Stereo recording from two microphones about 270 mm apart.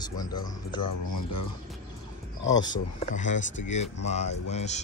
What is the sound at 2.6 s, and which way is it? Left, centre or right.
Speech, left.